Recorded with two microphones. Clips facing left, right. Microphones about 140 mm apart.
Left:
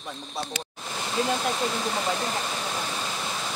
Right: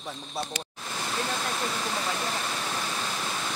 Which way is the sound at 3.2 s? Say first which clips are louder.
Left 1 dB; 10° left (ahead or behind).